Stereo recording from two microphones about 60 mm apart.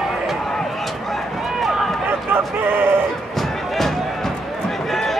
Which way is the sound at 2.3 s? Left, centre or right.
Right.